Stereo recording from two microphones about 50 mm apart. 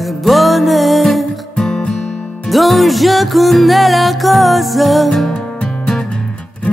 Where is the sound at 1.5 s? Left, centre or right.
Centre.